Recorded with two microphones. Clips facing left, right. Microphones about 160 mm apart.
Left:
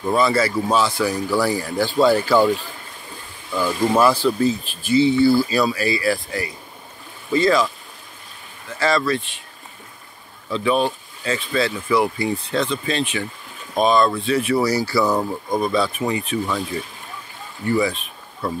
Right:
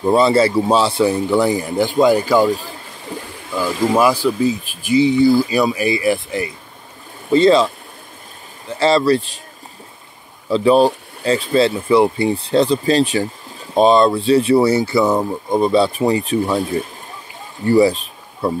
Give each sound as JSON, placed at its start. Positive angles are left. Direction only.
{"t": 0.0, "sound": "speech", "side_deg": -30}
{"t": 3.5, "sound": "speech", "side_deg": -10}
{"t": 10.5, "sound": "speech", "side_deg": -35}